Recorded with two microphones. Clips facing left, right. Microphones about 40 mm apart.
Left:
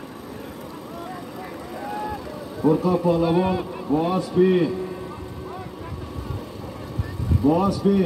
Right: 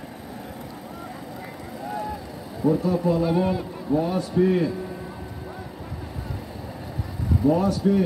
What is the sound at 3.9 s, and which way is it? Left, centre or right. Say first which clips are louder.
Speech: left 1 dB; left.